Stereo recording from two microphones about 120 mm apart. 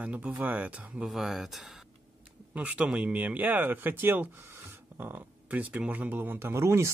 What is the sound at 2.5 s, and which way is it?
Speech, 10° right (ahead or behind).